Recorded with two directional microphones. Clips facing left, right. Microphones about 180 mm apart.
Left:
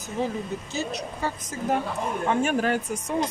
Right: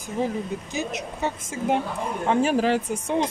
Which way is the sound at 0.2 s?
15° right (ahead or behind).